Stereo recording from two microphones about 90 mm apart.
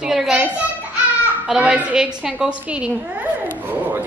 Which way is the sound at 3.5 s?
25° right (ahead or behind).